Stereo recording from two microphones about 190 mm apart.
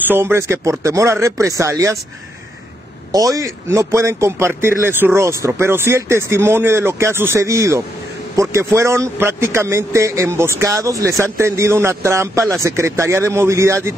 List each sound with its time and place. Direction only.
0.1 s a man's voice: 15° right (ahead or behind)
3.1 s a man's voice: 20° right (ahead or behind)